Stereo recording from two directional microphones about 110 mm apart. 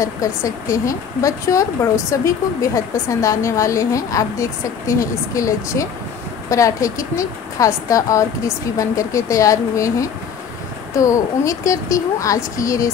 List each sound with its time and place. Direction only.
0.0 s speech: 30° left (ahead or behind)